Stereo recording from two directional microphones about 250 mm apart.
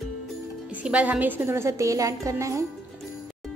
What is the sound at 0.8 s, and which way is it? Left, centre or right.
A woman's voice, centre.